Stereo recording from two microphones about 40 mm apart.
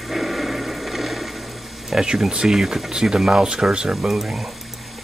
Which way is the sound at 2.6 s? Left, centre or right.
Centre.